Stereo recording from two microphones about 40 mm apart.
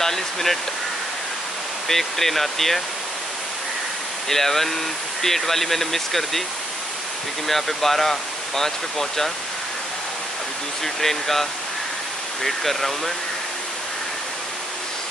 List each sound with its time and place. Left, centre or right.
0.0 s stream: centre
1.9 s speech: centre
4.3 s speech: centre
7.4 s speech: centre
11.0 s speech: centre
12.4 s speech: centre